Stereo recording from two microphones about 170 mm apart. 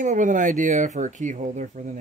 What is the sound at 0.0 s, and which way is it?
Speech, 50° right (ahead or behind).